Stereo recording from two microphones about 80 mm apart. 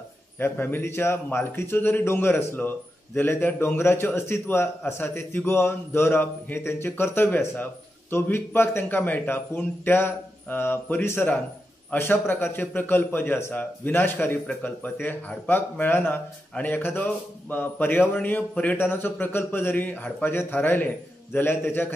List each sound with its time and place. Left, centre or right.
0.4 s a man's voice: left